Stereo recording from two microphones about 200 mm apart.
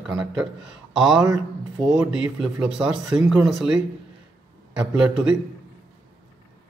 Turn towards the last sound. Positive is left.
turn(degrees=-5)  # may be behind; listen again after turning